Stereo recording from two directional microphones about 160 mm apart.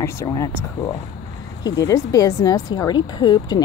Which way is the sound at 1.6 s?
25° left (ahead or behind).